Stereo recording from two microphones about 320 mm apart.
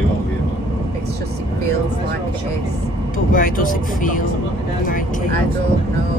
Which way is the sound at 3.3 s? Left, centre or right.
Left.